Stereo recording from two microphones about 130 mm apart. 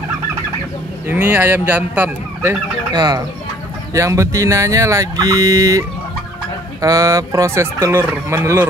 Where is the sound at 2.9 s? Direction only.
30° right (ahead or behind).